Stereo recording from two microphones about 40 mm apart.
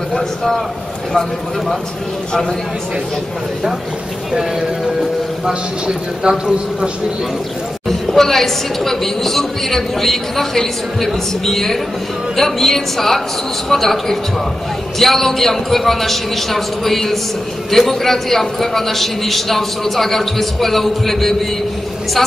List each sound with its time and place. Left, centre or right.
0.1 s a man's voice: centre
4.3 s speech: centre
8.1 s a woman's voice: centre